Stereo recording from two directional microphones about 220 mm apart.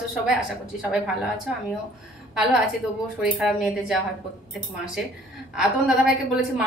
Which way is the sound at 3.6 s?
Centre (ahead or behind).